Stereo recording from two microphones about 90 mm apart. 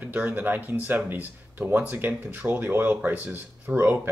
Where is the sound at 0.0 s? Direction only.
20° right (ahead or behind).